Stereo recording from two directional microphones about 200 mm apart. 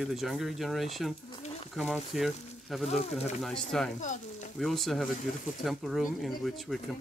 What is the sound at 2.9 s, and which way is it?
Speech, 35° left (ahead or behind).